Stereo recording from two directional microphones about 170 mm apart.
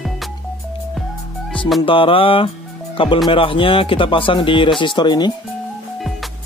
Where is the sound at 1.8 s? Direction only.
30° left (ahead or behind).